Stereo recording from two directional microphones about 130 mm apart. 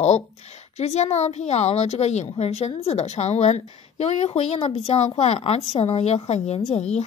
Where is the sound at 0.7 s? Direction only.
55° left (ahead or behind).